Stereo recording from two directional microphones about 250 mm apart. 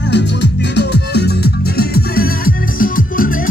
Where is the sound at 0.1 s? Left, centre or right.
Left.